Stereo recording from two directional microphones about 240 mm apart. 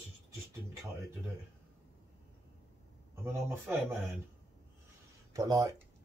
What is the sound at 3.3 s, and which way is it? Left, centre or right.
Speech, centre.